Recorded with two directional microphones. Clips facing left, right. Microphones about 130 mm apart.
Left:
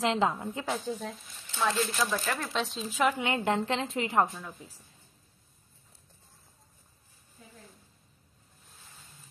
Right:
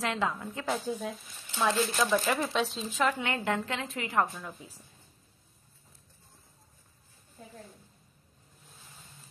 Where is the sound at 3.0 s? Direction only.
15° left (ahead or behind).